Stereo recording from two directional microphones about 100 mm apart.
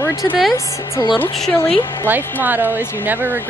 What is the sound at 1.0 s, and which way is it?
Speech, 40° left (ahead or behind).